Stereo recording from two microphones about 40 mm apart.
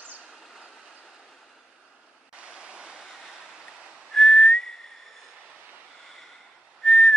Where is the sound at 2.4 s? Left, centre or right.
Right.